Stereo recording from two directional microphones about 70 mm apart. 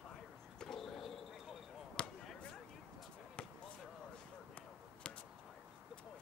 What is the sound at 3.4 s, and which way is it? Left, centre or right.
Basketball bounce, centre.